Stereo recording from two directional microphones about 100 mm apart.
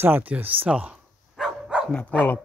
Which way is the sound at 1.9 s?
10° left (ahead or behind).